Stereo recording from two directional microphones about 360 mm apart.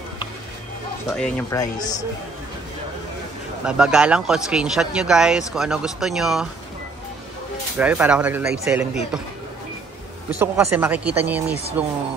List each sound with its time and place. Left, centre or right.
1.1 s speech: centre
3.6 s speech: centre
7.7 s speech: centre
10.4 s speech: centre